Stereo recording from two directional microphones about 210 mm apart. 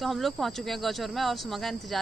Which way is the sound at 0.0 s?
Centre (ahead or behind).